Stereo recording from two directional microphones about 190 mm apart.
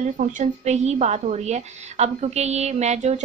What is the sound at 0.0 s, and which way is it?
Speech, 40° right (ahead or behind).